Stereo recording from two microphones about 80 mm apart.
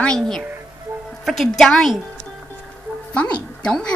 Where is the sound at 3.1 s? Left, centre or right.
Centre.